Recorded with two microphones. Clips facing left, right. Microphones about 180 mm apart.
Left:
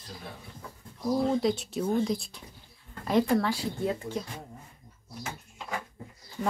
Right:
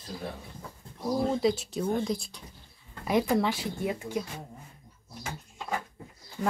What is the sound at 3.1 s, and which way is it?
Speech, 15° right (ahead or behind).